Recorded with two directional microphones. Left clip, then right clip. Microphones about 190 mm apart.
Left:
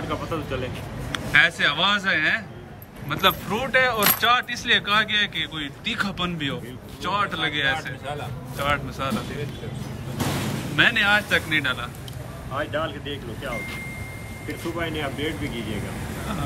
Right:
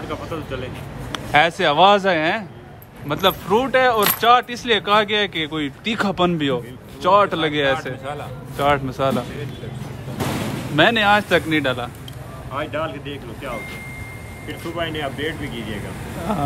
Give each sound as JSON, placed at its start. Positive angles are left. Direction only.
{"t": 0.1, "sound": "speech", "side_deg": 0}
{"t": 1.1, "sound": "speech", "side_deg": -20}
{"t": 10.8, "sound": "speech", "side_deg": -25}
{"t": 12.5, "sound": "speech", "side_deg": -40}
{"t": 14.8, "sound": "speech", "side_deg": -10}